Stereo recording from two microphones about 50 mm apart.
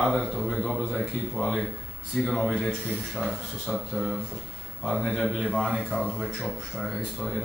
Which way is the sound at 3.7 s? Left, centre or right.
Centre.